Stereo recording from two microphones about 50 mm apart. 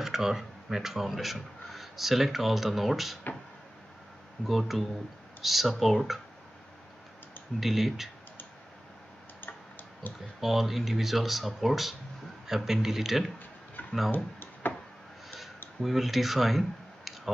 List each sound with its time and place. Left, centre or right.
0.0 s speech: centre
4.5 s speech: centre
7.6 s speech: centre
10.0 s speech: left
10.4 s speech: centre
14.1 s a sound: left
15.8 s speech: centre